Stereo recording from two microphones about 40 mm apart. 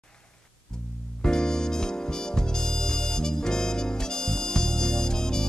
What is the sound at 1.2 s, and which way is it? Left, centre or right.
Music, centre.